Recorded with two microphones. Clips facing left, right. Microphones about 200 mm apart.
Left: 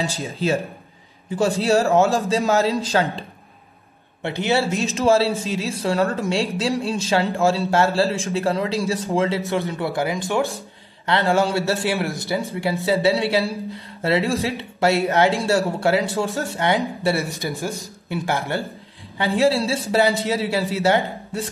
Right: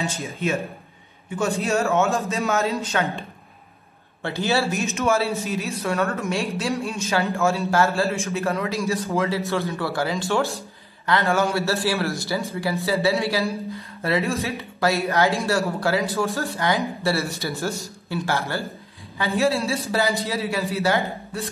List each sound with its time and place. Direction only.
0.0 s speech: 30° left (ahead or behind)
4.2 s a man's voice: 20° left (ahead or behind)
4.7 s speech: 30° left (ahead or behind)
11.1 s a man's voice: 30° left (ahead or behind)
19.1 s a man's voice: 30° left (ahead or behind)